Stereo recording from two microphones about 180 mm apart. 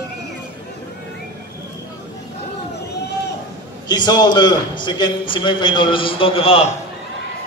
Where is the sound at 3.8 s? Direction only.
25° left (ahead or behind).